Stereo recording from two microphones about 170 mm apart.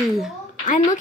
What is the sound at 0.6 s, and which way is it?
Speech, 50° left (ahead or behind).